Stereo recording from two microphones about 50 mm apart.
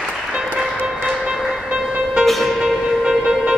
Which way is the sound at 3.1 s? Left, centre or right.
Centre.